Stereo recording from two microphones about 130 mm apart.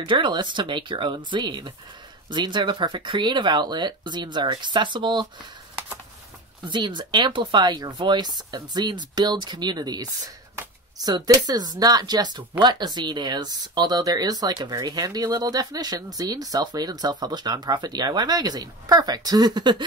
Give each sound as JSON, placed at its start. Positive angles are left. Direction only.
{"t": 0.0, "sound": "speech", "side_deg": -40}
{"t": 6.7, "sound": "speech", "side_deg": -35}